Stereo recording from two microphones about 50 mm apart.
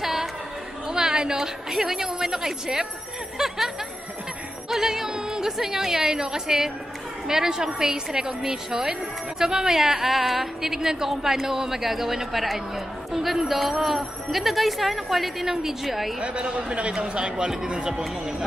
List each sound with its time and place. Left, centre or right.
0.0 s chatter: centre
0.8 s a woman's voice: centre
3.3 s a sound: centre
4.6 s a woman's voice: centre
16.2 s a man's voice: centre